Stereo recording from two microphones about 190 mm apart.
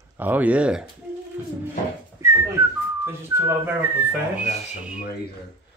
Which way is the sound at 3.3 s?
10° right (ahead or behind).